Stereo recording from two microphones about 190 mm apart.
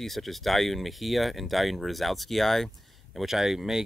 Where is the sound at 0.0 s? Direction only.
Centre (ahead or behind).